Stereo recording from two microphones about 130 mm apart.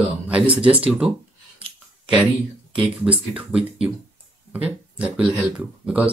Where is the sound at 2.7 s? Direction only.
10° right (ahead or behind).